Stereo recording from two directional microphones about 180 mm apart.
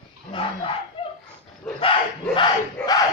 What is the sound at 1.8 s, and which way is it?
Dog, 25° left (ahead or behind).